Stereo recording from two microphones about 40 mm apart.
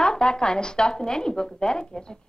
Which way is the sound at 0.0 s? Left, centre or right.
Left.